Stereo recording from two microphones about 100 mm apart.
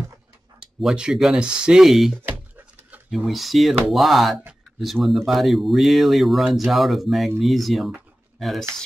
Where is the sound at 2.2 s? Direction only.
15° right (ahead or behind).